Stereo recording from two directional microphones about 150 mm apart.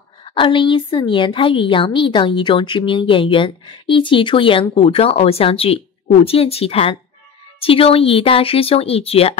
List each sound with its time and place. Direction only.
0.2 s a woman's voice: 35° left (ahead or behind)